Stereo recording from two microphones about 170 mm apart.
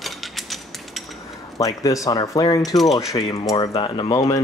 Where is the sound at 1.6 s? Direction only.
20° left (ahead or behind).